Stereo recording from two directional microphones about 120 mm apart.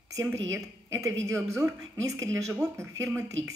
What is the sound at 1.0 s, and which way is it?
A woman's voice, 25° right (ahead or behind).